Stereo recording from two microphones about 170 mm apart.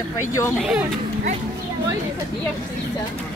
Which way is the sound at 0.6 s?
5° right (ahead or behind).